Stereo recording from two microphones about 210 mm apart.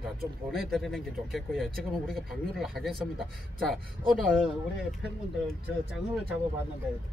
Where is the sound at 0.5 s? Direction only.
Centre (ahead or behind).